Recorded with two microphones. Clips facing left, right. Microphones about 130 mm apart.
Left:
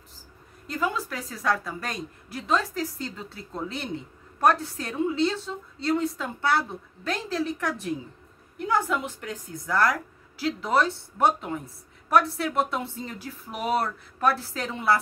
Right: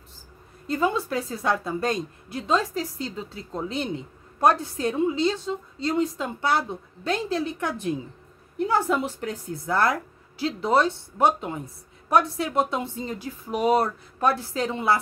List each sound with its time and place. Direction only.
0.7 s a woman's voice: 25° right (ahead or behind)